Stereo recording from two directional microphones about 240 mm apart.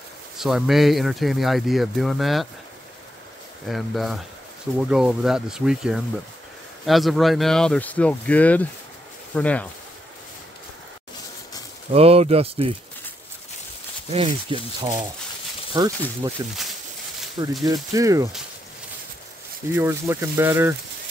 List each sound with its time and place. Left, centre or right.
0.4 s speech: centre
3.6 s speech: centre
11.9 s speech: right
14.1 s speech: right
17.6 s speech: centre
19.7 s speech: centre